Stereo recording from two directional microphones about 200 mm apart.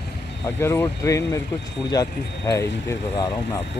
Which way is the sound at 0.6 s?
15° left (ahead or behind).